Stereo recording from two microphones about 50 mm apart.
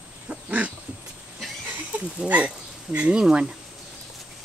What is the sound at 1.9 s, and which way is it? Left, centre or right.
Speech, right.